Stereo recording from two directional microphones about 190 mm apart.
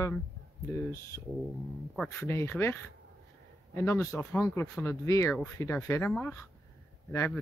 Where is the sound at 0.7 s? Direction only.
15° left (ahead or behind).